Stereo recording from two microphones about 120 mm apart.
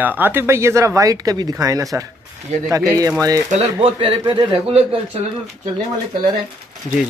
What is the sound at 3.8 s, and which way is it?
A man's voice, 50° right (ahead or behind).